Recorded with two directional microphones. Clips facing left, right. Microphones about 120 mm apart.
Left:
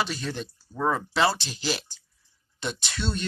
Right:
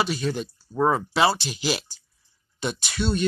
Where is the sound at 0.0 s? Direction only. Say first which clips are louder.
Right 5 dB; 5° right (ahead or behind).